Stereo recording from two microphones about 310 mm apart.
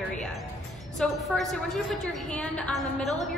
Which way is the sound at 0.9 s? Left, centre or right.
Centre.